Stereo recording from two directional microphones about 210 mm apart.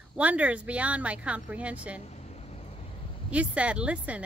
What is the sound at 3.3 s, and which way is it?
Speech, 5° right (ahead or behind).